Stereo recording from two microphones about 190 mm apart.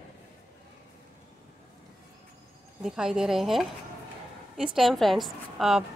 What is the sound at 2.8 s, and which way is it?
A woman's voice, 5° right (ahead or behind).